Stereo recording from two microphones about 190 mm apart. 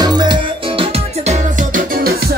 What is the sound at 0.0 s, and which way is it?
Music, 20° right (ahead or behind).